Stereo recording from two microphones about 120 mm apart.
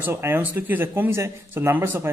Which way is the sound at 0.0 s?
20° right (ahead or behind).